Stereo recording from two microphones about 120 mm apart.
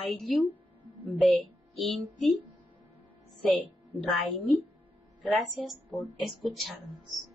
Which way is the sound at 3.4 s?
10° left (ahead or behind).